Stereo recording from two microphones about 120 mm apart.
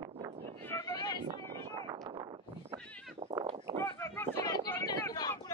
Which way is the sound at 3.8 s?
20° left (ahead or behind).